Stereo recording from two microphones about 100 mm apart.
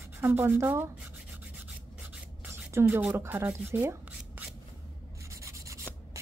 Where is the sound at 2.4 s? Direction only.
25° right (ahead or behind).